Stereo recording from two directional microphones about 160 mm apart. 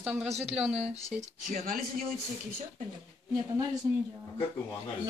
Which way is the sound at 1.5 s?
60° right (ahead or behind).